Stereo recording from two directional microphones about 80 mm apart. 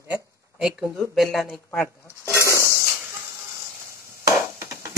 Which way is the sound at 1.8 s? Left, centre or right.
Left.